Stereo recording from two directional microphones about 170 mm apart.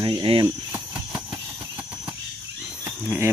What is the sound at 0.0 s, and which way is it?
Cricket, 30° right (ahead or behind).